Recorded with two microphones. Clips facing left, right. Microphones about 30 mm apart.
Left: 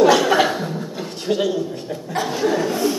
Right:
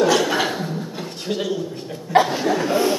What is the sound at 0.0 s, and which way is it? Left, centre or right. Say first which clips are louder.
Chuckle: left 4 dB; centre.